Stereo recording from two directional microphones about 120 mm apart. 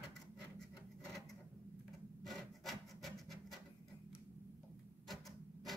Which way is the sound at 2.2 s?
Centre (ahead or behind).